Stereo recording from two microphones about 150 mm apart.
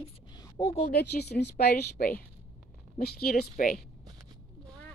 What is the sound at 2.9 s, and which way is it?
Speech, 80° left.